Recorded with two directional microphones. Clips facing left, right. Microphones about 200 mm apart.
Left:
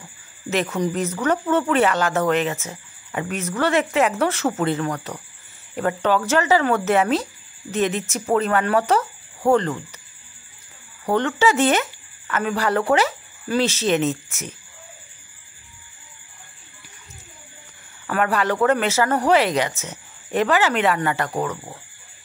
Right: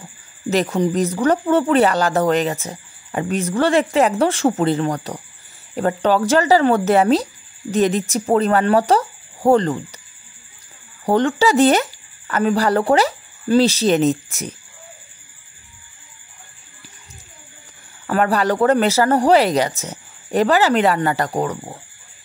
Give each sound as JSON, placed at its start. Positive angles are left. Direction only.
{"t": 0.5, "sound": "speech", "side_deg": -35}
{"t": 11.1, "sound": "speech", "side_deg": -35}
{"t": 18.0, "sound": "speech", "side_deg": -35}